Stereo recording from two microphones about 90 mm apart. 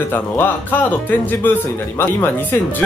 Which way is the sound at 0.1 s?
20° left (ahead or behind).